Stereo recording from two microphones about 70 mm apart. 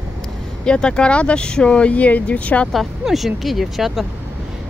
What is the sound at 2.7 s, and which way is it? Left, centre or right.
Speech, centre.